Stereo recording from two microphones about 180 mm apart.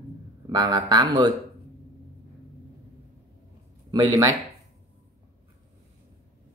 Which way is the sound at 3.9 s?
25° right (ahead or behind).